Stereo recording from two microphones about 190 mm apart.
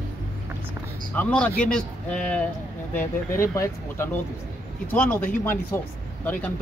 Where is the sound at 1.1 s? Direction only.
5° left (ahead or behind).